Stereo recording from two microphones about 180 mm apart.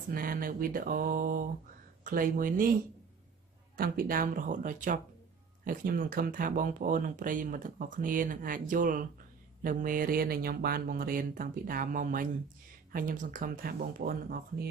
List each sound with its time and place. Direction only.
0.1 s speech: 55° right (ahead or behind)
3.7 s speech: 55° right (ahead or behind)